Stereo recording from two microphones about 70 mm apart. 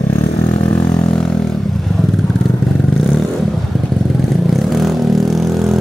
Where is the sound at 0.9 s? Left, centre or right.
Left.